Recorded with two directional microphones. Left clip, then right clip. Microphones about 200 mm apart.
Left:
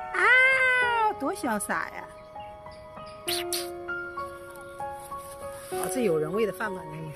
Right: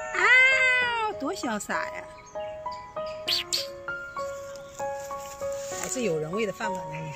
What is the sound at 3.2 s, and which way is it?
Music, 10° left (ahead or behind).